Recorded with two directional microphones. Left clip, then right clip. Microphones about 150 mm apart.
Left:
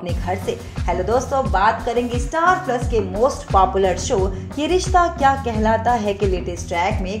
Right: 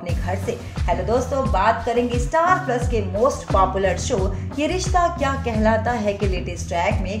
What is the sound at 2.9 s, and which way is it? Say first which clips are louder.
A woman's voice: left 2 dB; 35° left (ahead or behind).